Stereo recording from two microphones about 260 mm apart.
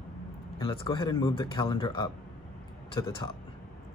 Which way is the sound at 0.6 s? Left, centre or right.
Centre.